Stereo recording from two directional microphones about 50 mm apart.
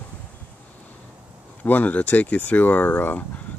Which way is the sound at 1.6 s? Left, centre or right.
Left.